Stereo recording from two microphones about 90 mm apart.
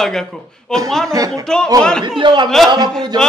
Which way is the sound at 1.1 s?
40° right (ahead or behind).